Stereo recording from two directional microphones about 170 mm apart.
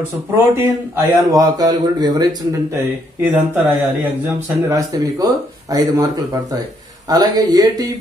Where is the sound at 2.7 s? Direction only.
10° right (ahead or behind).